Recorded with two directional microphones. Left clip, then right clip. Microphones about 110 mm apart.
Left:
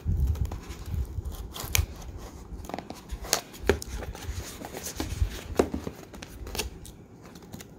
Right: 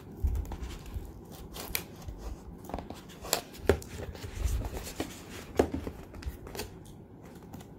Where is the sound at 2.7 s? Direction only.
25° left (ahead or behind).